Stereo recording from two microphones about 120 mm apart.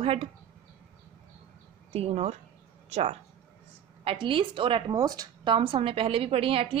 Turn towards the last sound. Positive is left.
turn(degrees=-50)  # may be behind; listen again after turning